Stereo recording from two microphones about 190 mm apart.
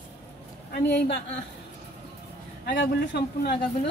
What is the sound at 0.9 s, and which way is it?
Speech, 65° left (ahead or behind).